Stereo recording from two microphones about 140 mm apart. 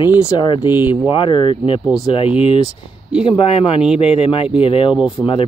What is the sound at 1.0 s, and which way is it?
Speech, 35° left (ahead or behind).